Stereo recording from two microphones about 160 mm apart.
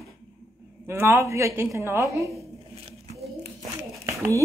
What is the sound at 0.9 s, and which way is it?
Speech, 15° right (ahead or behind).